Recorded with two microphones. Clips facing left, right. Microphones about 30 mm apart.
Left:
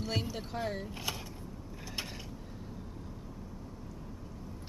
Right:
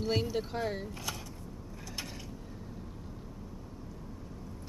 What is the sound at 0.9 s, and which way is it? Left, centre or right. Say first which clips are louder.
Mechanisms: left 1 dB; left.